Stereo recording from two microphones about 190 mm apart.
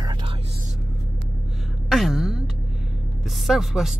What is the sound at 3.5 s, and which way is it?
Speech, centre (ahead or behind).